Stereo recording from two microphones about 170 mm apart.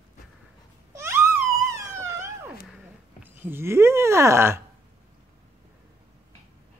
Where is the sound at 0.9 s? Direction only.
15° right (ahead or behind).